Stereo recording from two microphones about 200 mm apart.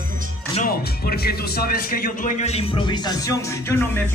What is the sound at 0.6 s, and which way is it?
Speech, 45° left (ahead or behind).